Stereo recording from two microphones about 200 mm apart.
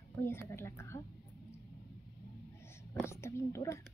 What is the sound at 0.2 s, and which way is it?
Speech, 10° left (ahead or behind).